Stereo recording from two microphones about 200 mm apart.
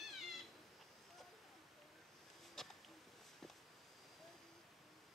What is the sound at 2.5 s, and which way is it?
Insect, centre (ahead or behind).